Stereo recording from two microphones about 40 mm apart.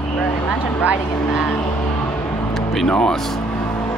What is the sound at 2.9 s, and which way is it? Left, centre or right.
Speech, centre.